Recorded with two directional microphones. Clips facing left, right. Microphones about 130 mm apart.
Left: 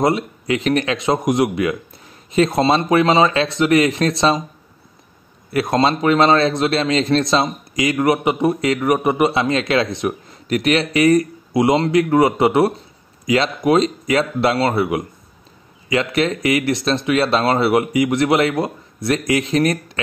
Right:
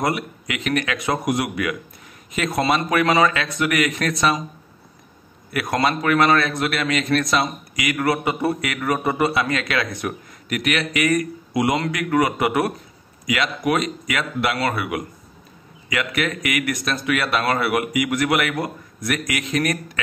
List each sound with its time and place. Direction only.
0.0 s a man's voice: 30° left (ahead or behind)
5.5 s a man's voice: 25° left (ahead or behind)